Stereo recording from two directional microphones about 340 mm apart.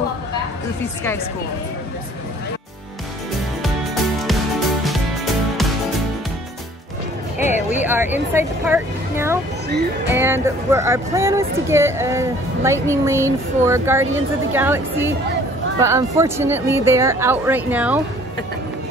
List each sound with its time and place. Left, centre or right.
3.6 s music: centre
7.3 s music: left
7.8 s speech: centre